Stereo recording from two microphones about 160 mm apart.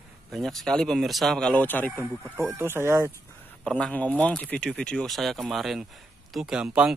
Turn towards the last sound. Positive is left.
turn(degrees=-5)  # may be behind; listen again after turning